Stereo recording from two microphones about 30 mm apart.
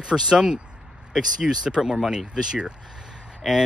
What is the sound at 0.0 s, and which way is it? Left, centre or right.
Speech, right.